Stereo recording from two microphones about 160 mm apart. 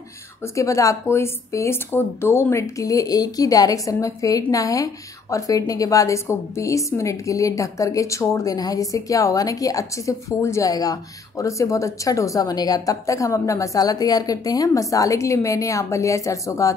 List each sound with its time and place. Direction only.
0.6 s a woman's voice: 20° left (ahead or behind)